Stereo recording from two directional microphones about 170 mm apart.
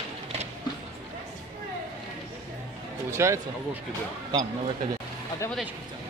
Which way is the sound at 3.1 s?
15° right (ahead or behind).